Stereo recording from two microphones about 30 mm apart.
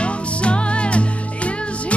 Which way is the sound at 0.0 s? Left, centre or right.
Left.